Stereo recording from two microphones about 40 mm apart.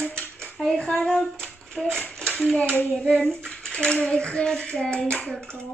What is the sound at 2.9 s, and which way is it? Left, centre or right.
Bathtub, left.